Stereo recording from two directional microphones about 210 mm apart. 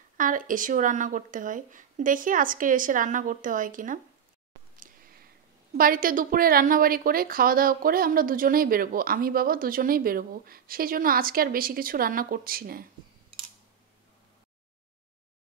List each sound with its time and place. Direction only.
0.2 s speech: 40° right (ahead or behind)
5.8 s a woman's voice: 40° right (ahead or behind)